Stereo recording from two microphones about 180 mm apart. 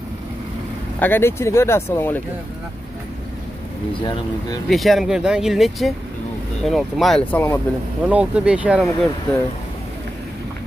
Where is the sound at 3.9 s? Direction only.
25° left (ahead or behind).